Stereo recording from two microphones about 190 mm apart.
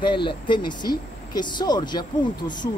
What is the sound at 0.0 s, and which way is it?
Speech, 25° left (ahead or behind).